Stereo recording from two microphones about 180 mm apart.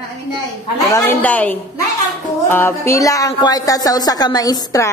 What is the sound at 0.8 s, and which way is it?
A woman's voice, 15° left (ahead or behind).